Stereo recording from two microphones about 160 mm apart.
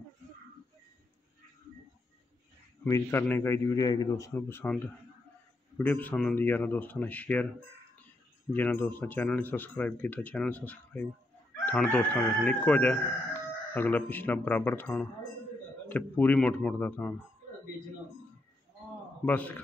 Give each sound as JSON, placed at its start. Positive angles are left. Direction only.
{"t": 2.8, "sound": "crowing", "side_deg": 15}
{"t": 5.8, "sound": "crowing", "side_deg": 10}
{"t": 8.5, "sound": "crowing", "side_deg": 10}
{"t": 19.2, "sound": "crowing", "side_deg": 10}